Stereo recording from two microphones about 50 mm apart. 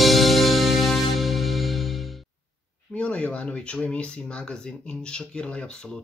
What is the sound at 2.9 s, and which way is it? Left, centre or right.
Speech, left.